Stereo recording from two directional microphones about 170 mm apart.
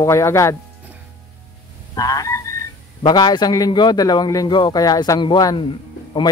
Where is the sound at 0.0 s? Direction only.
15° left (ahead or behind).